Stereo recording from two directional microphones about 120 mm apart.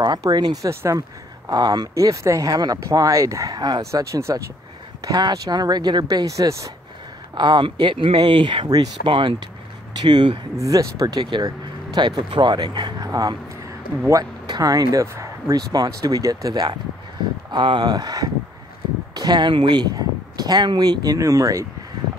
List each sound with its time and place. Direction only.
0.0 s speech: 35° right (ahead or behind)
7.3 s speech: 40° right (ahead or behind)
10.6 s speech: 30° right (ahead or behind)
14.4 s speech: 35° right (ahead or behind)